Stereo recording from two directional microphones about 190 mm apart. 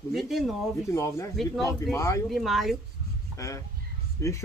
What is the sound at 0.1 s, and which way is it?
Speech, centre (ahead or behind).